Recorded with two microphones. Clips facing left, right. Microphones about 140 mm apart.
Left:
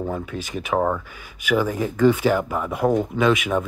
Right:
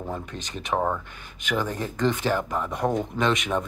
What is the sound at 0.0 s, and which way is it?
Speech, 5° left (ahead or behind).